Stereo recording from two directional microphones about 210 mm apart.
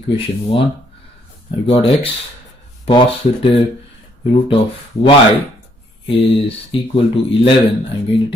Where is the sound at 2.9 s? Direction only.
25° left (ahead or behind).